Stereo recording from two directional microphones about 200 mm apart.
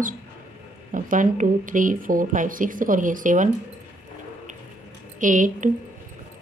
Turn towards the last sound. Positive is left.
turn(degrees=-40)  # may be behind; listen again after turning